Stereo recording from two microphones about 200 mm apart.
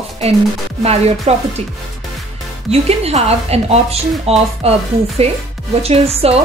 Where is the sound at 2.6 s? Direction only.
30° right (ahead or behind).